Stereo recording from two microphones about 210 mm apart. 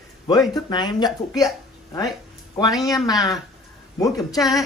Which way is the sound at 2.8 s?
15° left (ahead or behind).